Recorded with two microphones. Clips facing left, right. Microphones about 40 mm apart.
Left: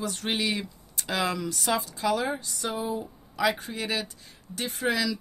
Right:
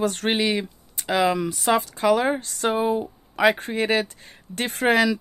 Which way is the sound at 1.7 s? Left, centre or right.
Right.